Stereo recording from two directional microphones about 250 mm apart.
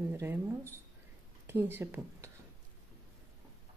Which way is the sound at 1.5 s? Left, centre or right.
Centre.